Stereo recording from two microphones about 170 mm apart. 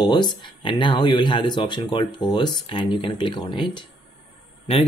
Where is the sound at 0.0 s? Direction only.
25° left (ahead or behind).